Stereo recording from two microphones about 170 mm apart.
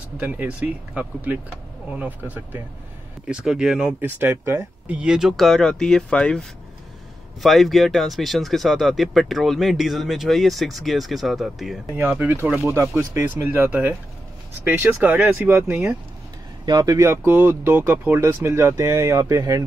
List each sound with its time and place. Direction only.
0.2 s speech: 10° right (ahead or behind)
4.8 s speech: 5° right (ahead or behind)
7.4 s speech: centre (ahead or behind)
16.6 s speech: 20° right (ahead or behind)